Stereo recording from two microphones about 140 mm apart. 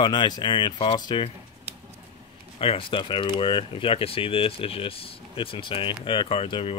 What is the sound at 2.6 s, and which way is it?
Speech, 40° left (ahead or behind).